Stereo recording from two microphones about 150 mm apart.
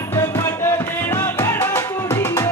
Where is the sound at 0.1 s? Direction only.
15° left (ahead or behind).